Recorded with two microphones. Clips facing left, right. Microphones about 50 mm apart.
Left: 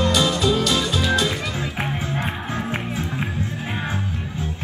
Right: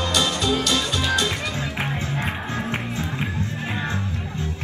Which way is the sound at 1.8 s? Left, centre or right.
Right.